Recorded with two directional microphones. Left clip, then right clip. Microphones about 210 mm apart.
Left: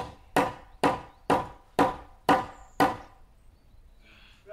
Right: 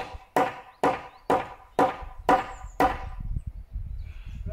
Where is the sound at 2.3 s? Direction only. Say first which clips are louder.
Right 2 dB; centre (ahead or behind).